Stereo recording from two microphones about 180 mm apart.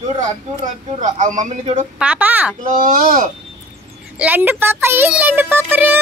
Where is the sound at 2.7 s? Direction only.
50° right (ahead or behind).